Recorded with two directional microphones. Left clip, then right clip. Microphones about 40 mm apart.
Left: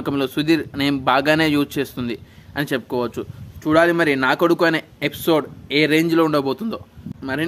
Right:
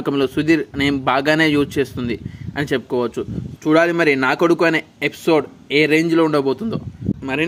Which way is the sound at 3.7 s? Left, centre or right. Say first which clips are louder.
Right 1 dB; right.